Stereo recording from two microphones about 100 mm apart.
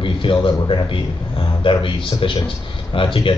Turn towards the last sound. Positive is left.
turn(degrees=60)  # may be behind; listen again after turning